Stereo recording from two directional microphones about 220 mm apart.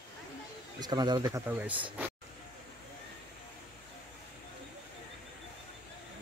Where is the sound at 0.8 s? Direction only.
20° right (ahead or behind).